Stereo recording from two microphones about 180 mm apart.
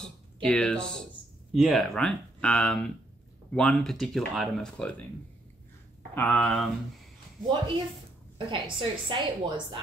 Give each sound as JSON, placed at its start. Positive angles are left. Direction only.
{"t": 0.0, "sound": "a sound", "side_deg": 5}
{"t": 1.5, "sound": "speech", "side_deg": 0}
{"t": 6.1, "sound": "speech", "side_deg": 5}
{"t": 7.4, "sound": "a woman's voice", "side_deg": -25}